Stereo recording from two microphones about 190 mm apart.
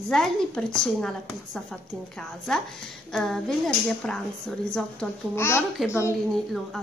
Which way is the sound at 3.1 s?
5° left (ahead or behind).